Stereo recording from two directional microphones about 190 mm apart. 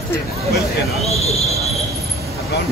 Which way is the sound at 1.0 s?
35° left (ahead or behind).